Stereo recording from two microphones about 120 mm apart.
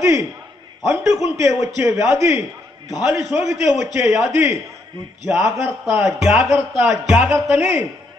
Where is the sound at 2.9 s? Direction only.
5° right (ahead or behind).